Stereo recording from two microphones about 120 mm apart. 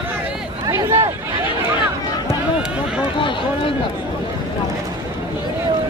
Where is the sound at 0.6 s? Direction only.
25° right (ahead or behind).